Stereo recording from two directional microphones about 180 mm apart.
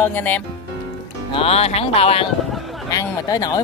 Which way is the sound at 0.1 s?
10° left (ahead or behind).